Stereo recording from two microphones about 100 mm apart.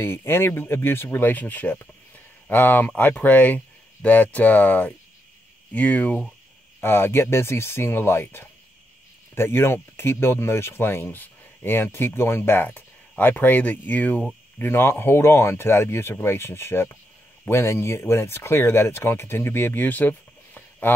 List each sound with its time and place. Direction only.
0.0 s speech: 25° left (ahead or behind)